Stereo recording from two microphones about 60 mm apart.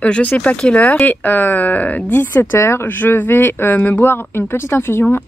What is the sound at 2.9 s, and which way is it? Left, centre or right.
Speech, left.